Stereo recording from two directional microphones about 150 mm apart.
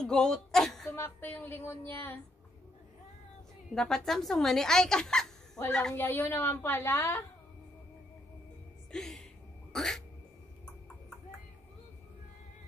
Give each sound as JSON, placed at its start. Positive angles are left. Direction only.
{"t": 0.0, "sound": "speech", "side_deg": 5}
{"t": 0.8, "sound": "a woman's voice", "side_deg": 15}
{"t": 3.7, "sound": "a woman's voice", "side_deg": 5}
{"t": 5.9, "sound": "a woman's voice", "side_deg": 15}
{"t": 8.9, "sound": "a woman's voice", "side_deg": 0}